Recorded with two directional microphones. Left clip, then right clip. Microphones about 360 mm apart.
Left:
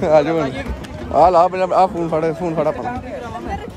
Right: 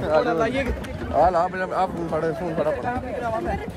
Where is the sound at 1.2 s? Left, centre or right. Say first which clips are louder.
Left 7 dB; centre.